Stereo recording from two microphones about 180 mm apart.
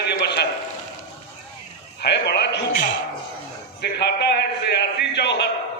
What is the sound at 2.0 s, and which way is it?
A man's voice, 70° left (ahead or behind).